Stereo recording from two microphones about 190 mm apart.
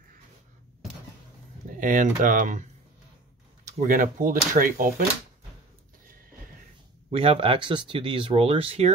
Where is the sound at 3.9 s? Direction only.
45° right (ahead or behind).